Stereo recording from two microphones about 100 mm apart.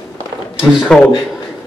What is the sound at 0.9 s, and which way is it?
Speech, 5° left (ahead or behind).